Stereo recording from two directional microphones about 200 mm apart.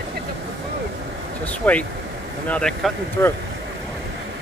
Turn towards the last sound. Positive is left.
turn(degrees=5)  # may be behind; listen again after turning